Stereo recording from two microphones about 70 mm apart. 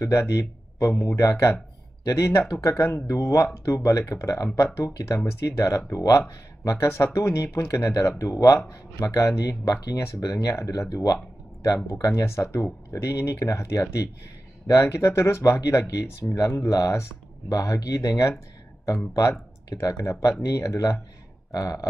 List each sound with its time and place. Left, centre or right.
0.0 s speech: left
4.6 s speech: left
9.9 s speech: left
10.2 s speech: left
14.8 s speech: left
19.7 s speech: left
21.5 s a sound: left